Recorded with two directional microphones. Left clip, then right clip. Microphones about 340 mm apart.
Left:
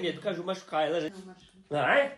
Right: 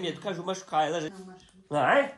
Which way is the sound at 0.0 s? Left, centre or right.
Centre.